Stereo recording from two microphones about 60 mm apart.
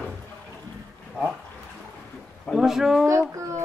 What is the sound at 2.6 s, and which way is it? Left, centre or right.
Speech, centre.